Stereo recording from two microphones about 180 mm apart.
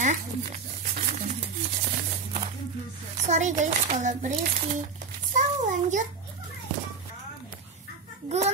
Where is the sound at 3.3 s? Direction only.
40° right (ahead or behind).